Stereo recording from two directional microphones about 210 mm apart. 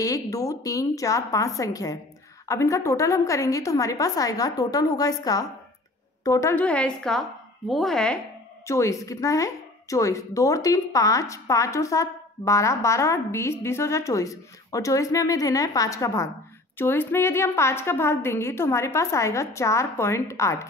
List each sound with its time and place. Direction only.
0.0 s a woman's voice: 15° left (ahead or behind)
8.6 s a woman's voice: 15° left (ahead or behind)